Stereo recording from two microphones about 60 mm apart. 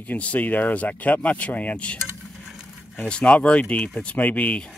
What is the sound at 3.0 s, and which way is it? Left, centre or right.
Speech, centre.